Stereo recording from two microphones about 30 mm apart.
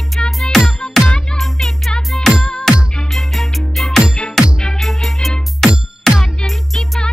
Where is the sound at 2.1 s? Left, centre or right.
Left.